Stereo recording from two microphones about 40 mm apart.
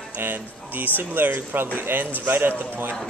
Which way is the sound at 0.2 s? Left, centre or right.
Right.